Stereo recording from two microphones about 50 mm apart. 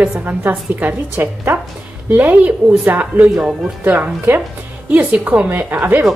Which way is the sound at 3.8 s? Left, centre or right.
Right.